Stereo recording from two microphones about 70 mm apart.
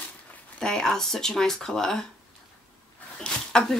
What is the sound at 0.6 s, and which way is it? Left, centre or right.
Speech, centre.